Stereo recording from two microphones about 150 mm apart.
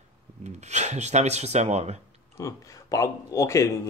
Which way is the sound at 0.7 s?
50° right (ahead or behind).